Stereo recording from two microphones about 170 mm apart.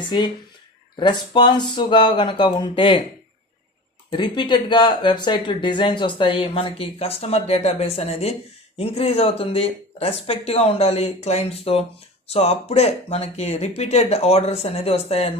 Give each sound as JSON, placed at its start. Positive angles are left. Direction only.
{"t": 0.0, "sound": "speech", "side_deg": 25}
{"t": 4.1, "sound": "speech", "side_deg": 25}